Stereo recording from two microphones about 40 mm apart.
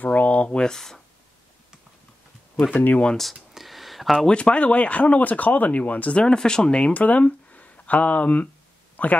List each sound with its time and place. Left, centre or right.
0.0 s a sound: left
0.7 s speech: centre
2.7 s speech: left
3.5 s a sound: centre
4.3 s speech: left
6.1 s speech: left
6.9 s speech: left